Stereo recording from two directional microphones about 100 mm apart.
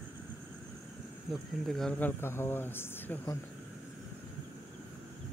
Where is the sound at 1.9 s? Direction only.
20° left (ahead or behind).